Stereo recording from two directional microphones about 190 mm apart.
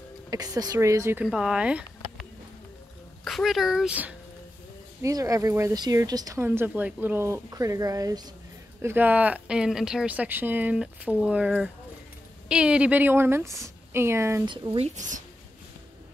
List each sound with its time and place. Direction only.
0.3 s speech: 20° right (ahead or behind)
3.3 s speech: centre (ahead or behind)
5.0 s speech: 15° right (ahead or behind)
14.5 s speech: 25° right (ahead or behind)
15.0 s speech: 40° right (ahead or behind)